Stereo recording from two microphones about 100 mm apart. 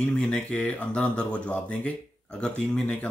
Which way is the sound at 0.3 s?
15° left (ahead or behind).